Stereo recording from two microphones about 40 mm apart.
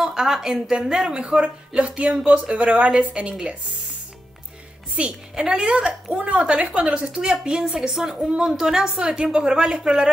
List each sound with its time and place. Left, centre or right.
0.0 s a woman's voice: centre
4.9 s a woman's voice: right
5.9 s a woman's voice: right